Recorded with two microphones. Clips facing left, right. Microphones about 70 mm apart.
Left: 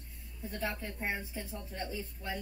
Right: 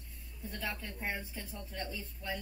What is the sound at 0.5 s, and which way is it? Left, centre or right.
Speech, left.